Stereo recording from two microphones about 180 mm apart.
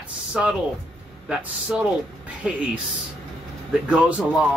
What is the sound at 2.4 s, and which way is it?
Speech, 5° right (ahead or behind).